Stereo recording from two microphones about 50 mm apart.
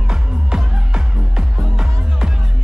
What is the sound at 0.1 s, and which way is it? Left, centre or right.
Music, centre.